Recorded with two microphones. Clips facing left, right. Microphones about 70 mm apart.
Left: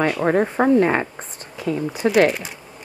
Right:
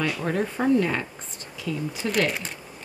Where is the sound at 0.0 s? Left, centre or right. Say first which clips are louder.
Left 8 dB; left.